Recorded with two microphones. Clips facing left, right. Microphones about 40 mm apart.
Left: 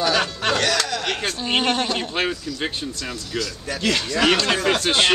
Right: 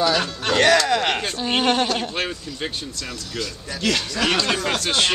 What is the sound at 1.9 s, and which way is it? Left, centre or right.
Speech, centre.